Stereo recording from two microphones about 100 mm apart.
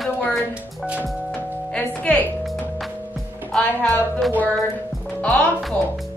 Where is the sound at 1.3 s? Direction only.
10° left (ahead or behind).